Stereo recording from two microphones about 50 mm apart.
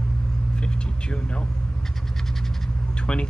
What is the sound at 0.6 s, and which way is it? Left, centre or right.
Vehicle, centre.